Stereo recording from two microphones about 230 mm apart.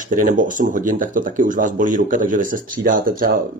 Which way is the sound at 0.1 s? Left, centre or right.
Right.